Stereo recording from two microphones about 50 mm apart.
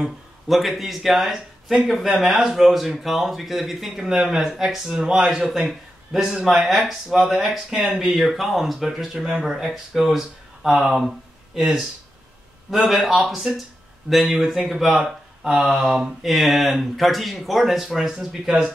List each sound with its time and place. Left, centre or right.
0.0 s speech: centre
4.1 s speech: centre
10.9 s a sound: centre
12.7 s speech: centre